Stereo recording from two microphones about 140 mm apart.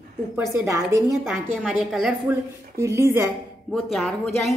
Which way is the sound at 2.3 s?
20° right (ahead or behind).